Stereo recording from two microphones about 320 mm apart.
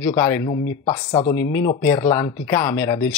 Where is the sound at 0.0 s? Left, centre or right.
Centre.